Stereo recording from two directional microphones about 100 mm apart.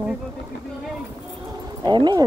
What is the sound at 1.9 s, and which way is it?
Speech, 50° right (ahead or behind).